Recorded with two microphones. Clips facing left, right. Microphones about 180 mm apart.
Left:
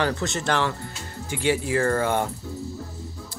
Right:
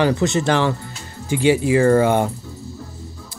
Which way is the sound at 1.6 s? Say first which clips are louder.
Right 8 dB; 15° right (ahead or behind).